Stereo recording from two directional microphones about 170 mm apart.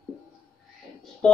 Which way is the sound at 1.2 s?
5° left (ahead or behind).